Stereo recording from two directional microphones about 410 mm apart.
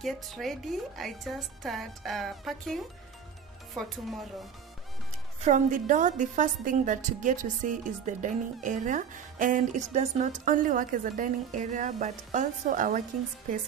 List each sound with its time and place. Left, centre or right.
0.0 s a woman's voice: centre
5.4 s a woman's voice: centre